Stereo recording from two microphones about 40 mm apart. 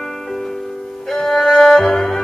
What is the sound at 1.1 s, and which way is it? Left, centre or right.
Music, centre.